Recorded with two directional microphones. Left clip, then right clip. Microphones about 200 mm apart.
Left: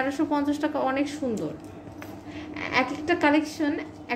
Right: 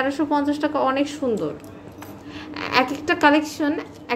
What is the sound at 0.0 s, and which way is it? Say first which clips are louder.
A woman's voice: right 4 dB; 15° right (ahead or behind).